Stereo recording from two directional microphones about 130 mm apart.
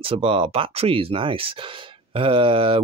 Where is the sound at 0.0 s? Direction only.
45° right (ahead or behind).